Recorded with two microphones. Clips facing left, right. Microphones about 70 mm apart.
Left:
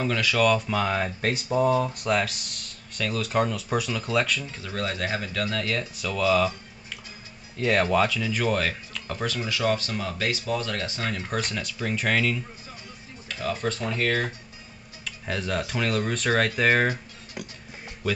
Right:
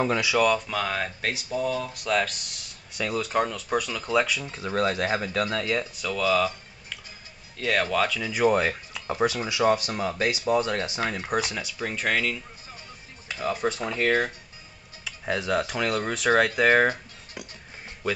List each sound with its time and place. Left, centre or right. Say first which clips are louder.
0.2 s speech: left 4 dB; centre
0.6 s speech: left 3 dB; centre
1.5 s speech: left 6 dB; left
2.0 s speech: even; centre
4.5 s speech: right 5 dB; right
5.6 s speech: right 2 dB; centre
5.9 s speech: even; centre
6.2 s a sound: left 1 dB; centre
7.5 s speech: left 3 dB; centre
8.3 s speech: right 3 dB; centre
9.9 s speech: right 2 dB; right; by 12.4 s centre
13.5 s speech: right 1 dB; centre
15.0 s speech: right 3 dB; centre